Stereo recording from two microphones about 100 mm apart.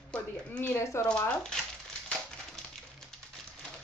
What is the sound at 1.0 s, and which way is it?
Speech, 15° left (ahead or behind).